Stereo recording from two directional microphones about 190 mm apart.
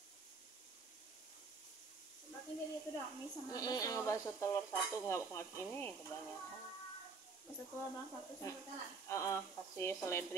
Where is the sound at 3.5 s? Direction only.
20° left (ahead or behind).